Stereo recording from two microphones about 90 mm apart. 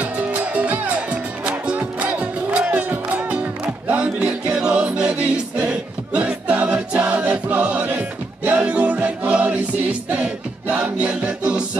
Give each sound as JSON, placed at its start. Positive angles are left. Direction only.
{"t": 0.0, "sound": "music", "side_deg": -15}
{"t": 6.1, "sound": "music", "side_deg": -15}